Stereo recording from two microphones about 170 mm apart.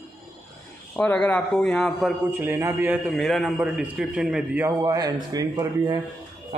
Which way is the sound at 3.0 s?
Centre (ahead or behind).